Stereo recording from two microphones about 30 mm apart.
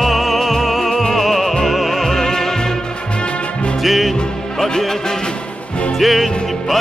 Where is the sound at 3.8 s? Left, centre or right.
Centre.